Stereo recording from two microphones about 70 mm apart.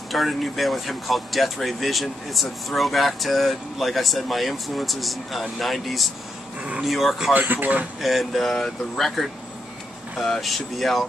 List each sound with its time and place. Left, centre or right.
0.1 s speech: centre
7.3 s speech: right
8.0 s speech: centre